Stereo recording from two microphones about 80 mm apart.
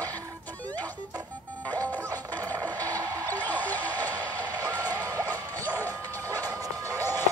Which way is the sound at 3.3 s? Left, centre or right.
Left.